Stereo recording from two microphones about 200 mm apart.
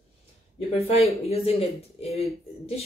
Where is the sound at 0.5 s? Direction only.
30° left (ahead or behind).